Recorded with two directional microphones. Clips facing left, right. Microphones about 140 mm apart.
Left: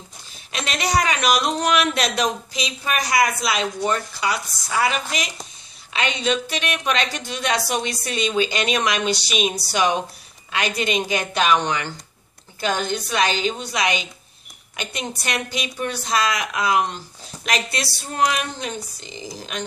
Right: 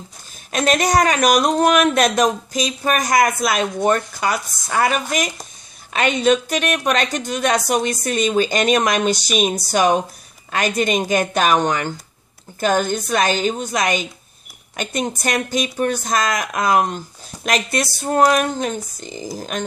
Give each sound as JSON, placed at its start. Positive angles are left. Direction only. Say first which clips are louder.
{"t": 0.5, "sound": "speech", "louder": "right 7 dB", "side_deg": -45}